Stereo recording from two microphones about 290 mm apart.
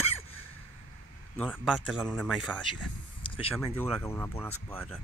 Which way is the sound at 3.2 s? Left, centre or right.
Centre.